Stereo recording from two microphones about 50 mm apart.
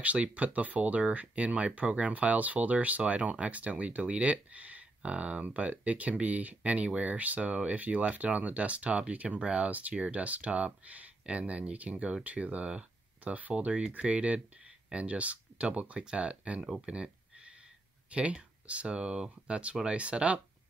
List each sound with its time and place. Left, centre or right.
0.0 s speech: right
16.6 s speech: centre
18.1 s speech: right